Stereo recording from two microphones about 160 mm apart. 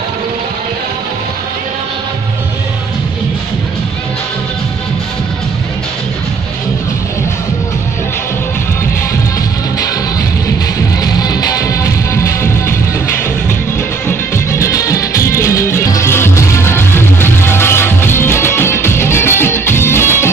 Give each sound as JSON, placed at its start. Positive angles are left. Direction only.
{"t": 11.1, "sound": "music", "side_deg": 25}
{"t": 14.0, "sound": "music", "side_deg": 15}